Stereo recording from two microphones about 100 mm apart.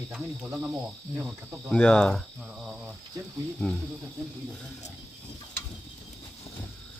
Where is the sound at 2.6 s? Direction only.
5° right (ahead or behind).